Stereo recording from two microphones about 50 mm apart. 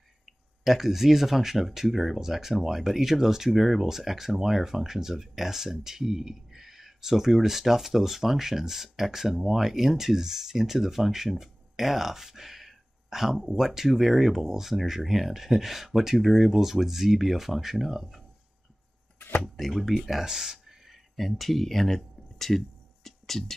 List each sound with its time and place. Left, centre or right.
0.7 s speech: centre
19.1 s drawer open or close: left
19.4 s speech: centre
23.0 s a sound: centre